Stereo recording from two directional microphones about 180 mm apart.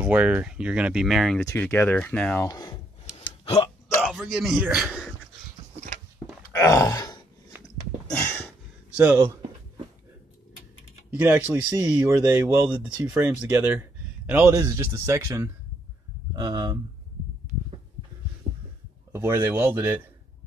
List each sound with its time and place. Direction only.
0.0 s speech: 5° right (ahead or behind)
1.5 s speech: 10° left (ahead or behind)
2.4 s groan: 20° left (ahead or behind)
3.1 s hiccup: 35° left (ahead or behind)
4.0 s a man's voice: centre (ahead or behind)
6.5 s groan: 15° left (ahead or behind)
8.1 s a sound: 15° left (ahead or behind)
8.9 s speech: 10° right (ahead or behind)
11.1 s speech: 10° right (ahead or behind)
14.5 s speech: 20° right (ahead or behind)
19.1 s speech: 15° right (ahead or behind)